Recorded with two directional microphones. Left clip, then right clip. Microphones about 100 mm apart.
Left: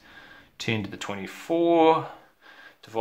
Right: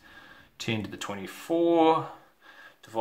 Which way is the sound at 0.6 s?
30° left (ahead or behind).